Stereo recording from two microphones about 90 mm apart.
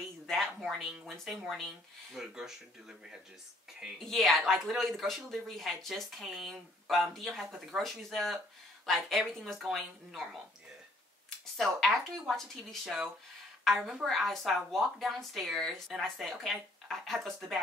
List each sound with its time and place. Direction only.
0.3 s a sound: 5° left (ahead or behind)
0.7 s speech: 5° right (ahead or behind)
3.8 s speech: centre (ahead or behind)
11.2 s a woman's voice: centre (ahead or behind)